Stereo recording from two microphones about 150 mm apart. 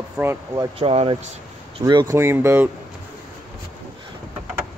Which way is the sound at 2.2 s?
15° right (ahead or behind).